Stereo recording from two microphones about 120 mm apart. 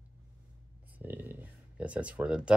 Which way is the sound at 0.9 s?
15° right (ahead or behind).